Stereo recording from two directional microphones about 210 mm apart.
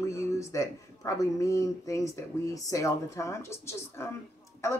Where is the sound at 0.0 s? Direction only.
15° left (ahead or behind).